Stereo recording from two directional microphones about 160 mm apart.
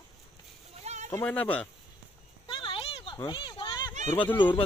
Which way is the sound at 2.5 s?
35° left (ahead or behind).